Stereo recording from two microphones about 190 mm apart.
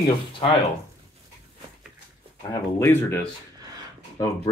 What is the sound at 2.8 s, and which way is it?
Speech, 15° left (ahead or behind).